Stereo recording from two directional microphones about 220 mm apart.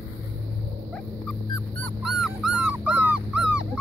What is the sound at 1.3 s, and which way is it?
Dog, centre (ahead or behind).